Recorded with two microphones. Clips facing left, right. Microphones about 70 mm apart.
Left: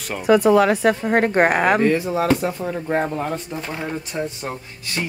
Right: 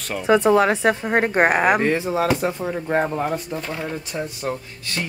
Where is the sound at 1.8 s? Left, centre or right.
Right.